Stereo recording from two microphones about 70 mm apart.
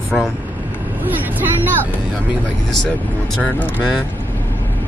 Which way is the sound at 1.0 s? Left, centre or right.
Right.